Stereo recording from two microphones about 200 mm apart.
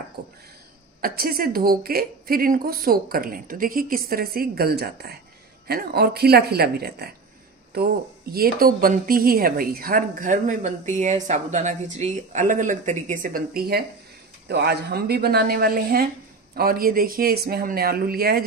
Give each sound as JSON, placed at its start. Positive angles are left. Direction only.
{"t": 1.0, "sound": "speech", "side_deg": -50}